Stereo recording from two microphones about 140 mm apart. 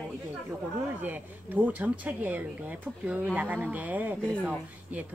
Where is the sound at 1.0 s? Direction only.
15° right (ahead or behind).